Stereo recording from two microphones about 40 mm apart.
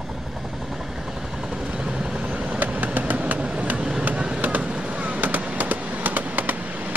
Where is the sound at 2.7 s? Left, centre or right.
Right.